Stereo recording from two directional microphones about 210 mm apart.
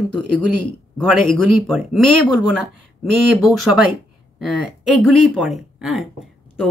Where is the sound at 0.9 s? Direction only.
Centre (ahead or behind).